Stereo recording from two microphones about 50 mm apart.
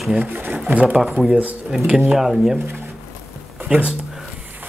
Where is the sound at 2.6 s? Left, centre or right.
Right.